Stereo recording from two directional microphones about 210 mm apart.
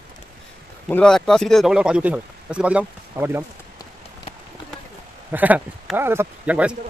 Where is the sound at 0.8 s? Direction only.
5° left (ahead or behind); by 3.4 s 10° right (ahead or behind).